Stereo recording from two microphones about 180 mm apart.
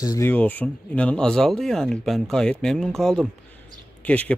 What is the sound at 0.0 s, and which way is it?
Speech, 20° left (ahead or behind).